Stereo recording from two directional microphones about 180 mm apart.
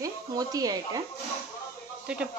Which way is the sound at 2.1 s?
5° right (ahead or behind).